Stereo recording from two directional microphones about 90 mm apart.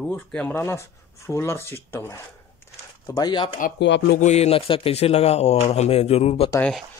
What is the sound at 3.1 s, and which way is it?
Speech, 50° left (ahead or behind).